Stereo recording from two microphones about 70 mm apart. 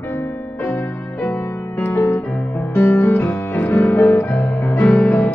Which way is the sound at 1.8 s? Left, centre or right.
Left.